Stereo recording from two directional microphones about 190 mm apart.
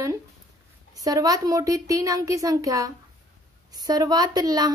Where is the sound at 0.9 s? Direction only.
20° right (ahead or behind).